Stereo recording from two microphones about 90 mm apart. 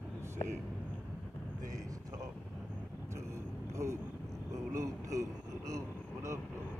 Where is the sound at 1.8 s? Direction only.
40° right (ahead or behind).